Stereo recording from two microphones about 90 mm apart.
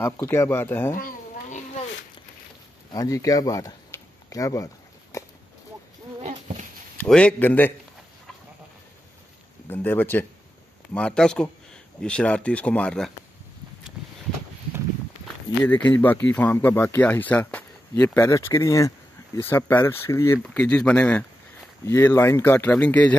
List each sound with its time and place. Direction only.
0.0 s speech: 30° left (ahead or behind)
2.9 s speech: 40° left (ahead or behind)
3.9 s a sound: 25° left (ahead or behind)
4.3 s speech: 40° left (ahead or behind)
5.1 s a sound: 35° left (ahead or behind)
7.1 s speech: 15° left (ahead or behind)
9.7 s speech: 25° left (ahead or behind)
11.0 s speech: 10° left (ahead or behind)
15.7 s speech: 20° left (ahead or behind)
17.9 s speech: 35° left (ahead or behind)
19.4 s speech: 25° left (ahead or behind)
20.4 s speech: 15° left (ahead or behind)
21.8 s speech: 30° left (ahead or behind)